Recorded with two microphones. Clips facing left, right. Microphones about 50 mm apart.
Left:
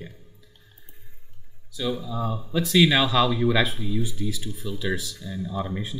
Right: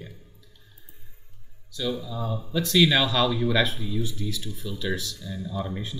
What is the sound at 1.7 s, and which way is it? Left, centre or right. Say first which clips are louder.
Speech: left 2 dB; centre.